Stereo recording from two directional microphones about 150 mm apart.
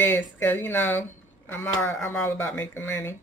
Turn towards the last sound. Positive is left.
turn(degrees=15)  # may be behind; listen again after turning